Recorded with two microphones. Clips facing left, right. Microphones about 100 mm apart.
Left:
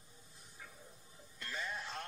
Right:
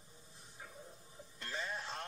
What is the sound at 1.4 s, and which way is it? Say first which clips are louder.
Music: right 1 dB; 25° right (ahead or behind).